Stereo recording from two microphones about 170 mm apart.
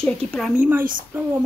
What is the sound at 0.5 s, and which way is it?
Speech, 10° right (ahead or behind).